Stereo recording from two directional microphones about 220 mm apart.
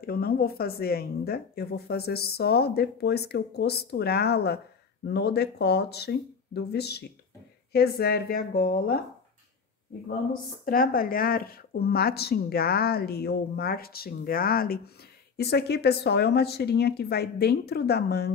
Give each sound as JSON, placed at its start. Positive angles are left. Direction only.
{"t": 0.0, "sound": "a woman's voice", "side_deg": 45}
{"t": 10.6, "sound": "a woman's voice", "side_deg": 40}